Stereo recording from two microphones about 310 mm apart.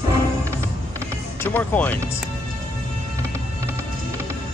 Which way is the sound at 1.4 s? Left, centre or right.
Centre.